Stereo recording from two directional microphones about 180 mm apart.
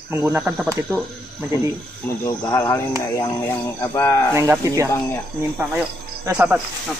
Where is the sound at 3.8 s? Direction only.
15° left (ahead or behind).